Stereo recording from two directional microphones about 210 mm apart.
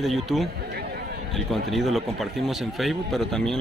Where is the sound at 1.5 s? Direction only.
Centre (ahead or behind).